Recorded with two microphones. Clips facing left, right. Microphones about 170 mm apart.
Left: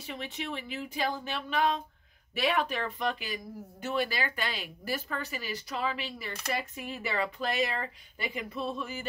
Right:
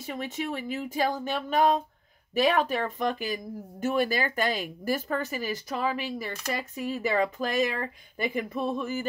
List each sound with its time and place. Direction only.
0.0 s speech: 45° right (ahead or behind)